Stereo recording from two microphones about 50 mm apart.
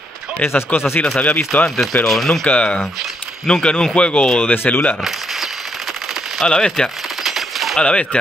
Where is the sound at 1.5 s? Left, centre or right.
Left.